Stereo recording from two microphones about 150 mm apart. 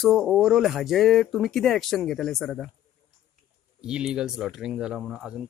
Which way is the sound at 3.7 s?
5° right (ahead or behind).